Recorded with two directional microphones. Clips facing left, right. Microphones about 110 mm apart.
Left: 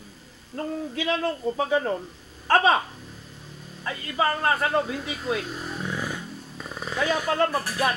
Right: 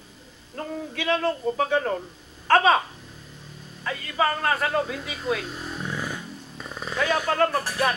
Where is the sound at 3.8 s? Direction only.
30° left (ahead or behind).